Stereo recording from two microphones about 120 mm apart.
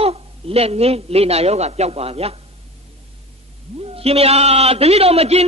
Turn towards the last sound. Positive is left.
turn(degrees=-55)  # may be behind; listen again after turning